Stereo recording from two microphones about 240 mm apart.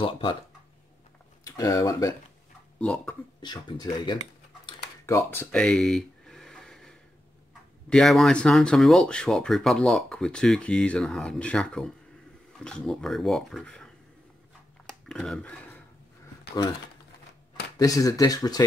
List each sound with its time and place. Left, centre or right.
0.0 s speech: left
1.4 s speech: centre
3.3 s speech: centre
4.6 s a sound: centre
7.9 s speech: centre
14.9 s a sound: centre
17.7 s speech: centre